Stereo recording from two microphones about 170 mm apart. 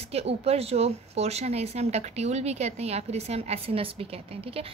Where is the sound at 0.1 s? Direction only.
35° right (ahead or behind).